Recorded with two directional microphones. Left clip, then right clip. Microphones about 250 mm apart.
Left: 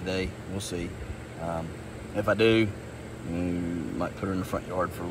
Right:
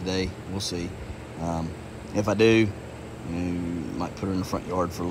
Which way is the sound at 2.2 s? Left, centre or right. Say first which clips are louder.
Right 2 dB; centre.